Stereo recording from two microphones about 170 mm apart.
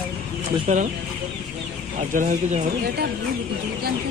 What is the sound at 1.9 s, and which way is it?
Speech, 50° right (ahead or behind).